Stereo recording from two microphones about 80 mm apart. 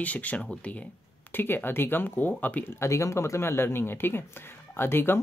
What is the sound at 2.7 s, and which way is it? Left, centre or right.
Speech, left.